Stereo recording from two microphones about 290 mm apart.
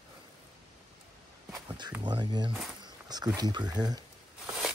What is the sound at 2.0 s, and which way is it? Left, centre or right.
Speech, centre.